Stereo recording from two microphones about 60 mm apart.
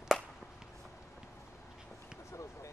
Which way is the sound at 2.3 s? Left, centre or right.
Left.